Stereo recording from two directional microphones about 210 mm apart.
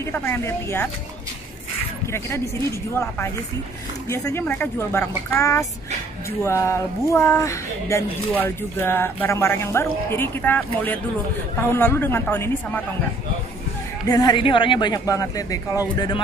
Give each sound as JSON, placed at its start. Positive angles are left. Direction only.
{"t": 0.0, "sound": "speech", "side_deg": 10}
{"t": 2.1, "sound": "speech", "side_deg": 15}
{"t": 4.1, "sound": "speech", "side_deg": 15}
{"t": 14.0, "sound": "speech", "side_deg": 15}